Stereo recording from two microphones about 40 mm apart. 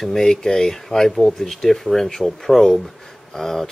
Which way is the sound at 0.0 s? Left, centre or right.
Centre.